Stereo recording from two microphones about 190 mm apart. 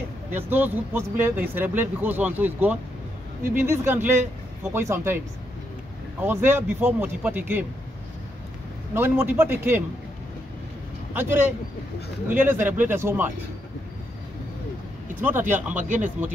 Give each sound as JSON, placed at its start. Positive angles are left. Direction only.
{"t": 0.3, "sound": "speech", "side_deg": -10}
{"t": 3.8, "sound": "speech", "side_deg": -10}
{"t": 6.2, "sound": "speech", "side_deg": -10}
{"t": 8.9, "sound": "speech", "side_deg": -10}
{"t": 11.1, "sound": "speech", "side_deg": -10}
{"t": 15.1, "sound": "speech", "side_deg": -10}
{"t": 15.8, "sound": "a man's voice", "side_deg": -40}